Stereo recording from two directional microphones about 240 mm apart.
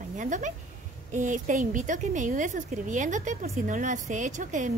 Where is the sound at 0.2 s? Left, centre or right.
Right.